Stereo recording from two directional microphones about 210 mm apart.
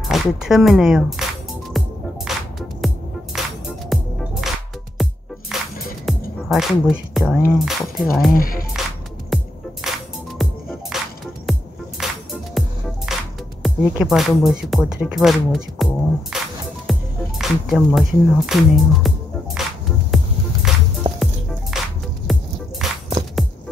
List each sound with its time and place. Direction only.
0.1 s speech: centre (ahead or behind)
1.8 s music: centre (ahead or behind)
7.5 s speech: centre (ahead or behind)
8.3 s speech: 45° left (ahead or behind)
8.8 s music: centre (ahead or behind)
13.6 s speech: centre (ahead or behind)
16.9 s music: centre (ahead or behind)
17.4 s speech: centre (ahead or behind)
20.7 s music: centre (ahead or behind)